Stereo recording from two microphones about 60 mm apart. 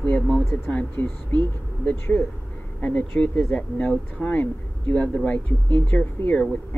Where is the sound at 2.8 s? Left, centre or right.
Left.